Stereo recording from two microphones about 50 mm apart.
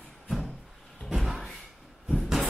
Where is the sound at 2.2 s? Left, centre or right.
Centre.